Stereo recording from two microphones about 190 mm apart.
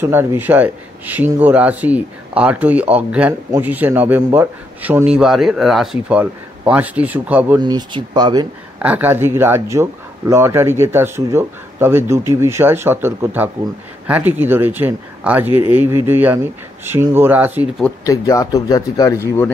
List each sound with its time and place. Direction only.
0.0 s speech: 10° right (ahead or behind)
7.6 s speech: 25° right (ahead or behind)
8.7 s speech: 10° right (ahead or behind)
18.0 s speech: 15° left (ahead or behind)